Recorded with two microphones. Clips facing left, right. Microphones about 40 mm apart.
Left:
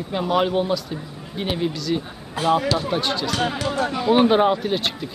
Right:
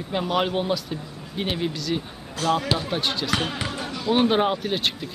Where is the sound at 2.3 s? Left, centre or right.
Centre.